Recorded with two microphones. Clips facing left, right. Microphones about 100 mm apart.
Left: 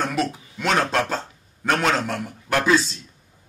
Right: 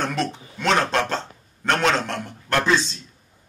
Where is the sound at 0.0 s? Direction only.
5° left (ahead or behind).